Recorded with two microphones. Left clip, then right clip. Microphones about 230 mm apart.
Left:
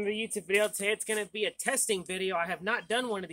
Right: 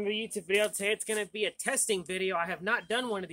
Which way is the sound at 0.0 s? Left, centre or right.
Centre.